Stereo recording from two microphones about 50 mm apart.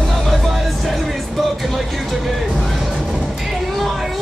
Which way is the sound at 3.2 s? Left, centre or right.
Centre.